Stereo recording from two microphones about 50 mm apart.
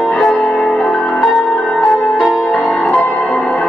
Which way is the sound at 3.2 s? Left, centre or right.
Centre.